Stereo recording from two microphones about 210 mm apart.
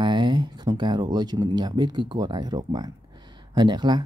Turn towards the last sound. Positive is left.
turn(degrees=-20)  # may be behind; listen again after turning